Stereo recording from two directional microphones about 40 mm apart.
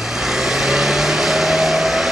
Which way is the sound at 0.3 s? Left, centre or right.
Centre.